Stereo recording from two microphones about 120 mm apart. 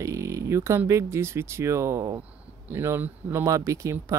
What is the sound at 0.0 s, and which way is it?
Speech, 25° right (ahead or behind).